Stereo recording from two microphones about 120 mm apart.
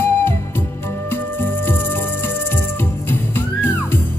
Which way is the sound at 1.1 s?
15° left (ahead or behind).